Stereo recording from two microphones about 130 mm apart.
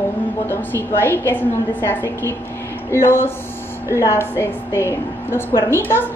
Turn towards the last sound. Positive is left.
turn(degrees=15)  # may be behind; listen again after turning